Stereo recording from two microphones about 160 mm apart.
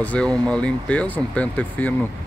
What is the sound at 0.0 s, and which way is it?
Speech, 5° left (ahead or behind).